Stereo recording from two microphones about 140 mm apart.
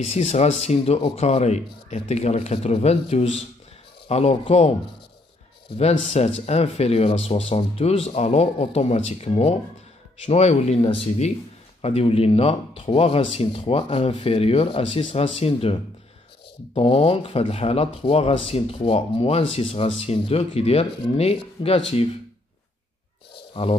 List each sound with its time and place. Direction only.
0.1 s speech: 50° left (ahead or behind)
5.8 s speech: 50° left (ahead or behind)
23.6 s speech: 50° left (ahead or behind)